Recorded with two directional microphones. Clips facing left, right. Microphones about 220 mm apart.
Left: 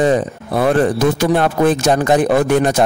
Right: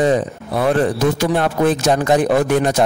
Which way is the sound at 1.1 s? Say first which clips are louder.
Left 2 dB; 50° left (ahead or behind).